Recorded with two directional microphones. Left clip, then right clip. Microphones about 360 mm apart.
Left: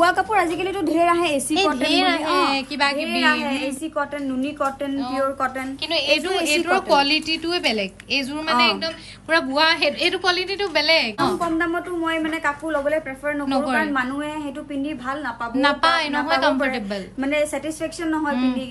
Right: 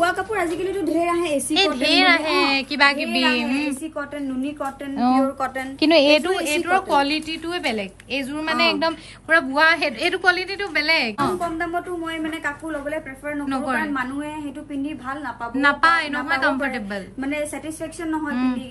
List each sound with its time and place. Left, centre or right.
0.0 s a woman's voice: centre
0.6 s a woman's voice: centre
5.8 s a woman's voice: centre
15.5 s a woman's voice: centre